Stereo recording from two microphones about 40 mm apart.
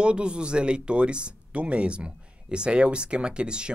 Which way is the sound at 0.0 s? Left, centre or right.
Right.